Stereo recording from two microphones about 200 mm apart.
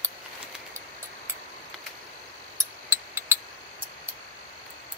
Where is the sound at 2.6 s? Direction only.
15° right (ahead or behind).